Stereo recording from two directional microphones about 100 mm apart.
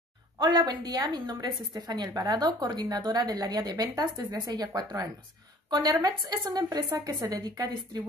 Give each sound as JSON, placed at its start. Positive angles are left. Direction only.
{"t": 0.4, "sound": "a woman's voice", "side_deg": -45}